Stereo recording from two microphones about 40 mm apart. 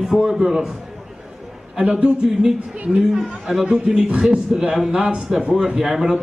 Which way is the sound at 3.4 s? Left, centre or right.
Centre.